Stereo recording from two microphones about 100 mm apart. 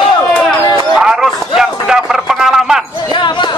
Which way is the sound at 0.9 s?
5° right (ahead or behind).